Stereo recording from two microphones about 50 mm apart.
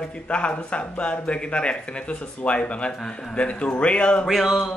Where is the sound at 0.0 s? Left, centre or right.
Left.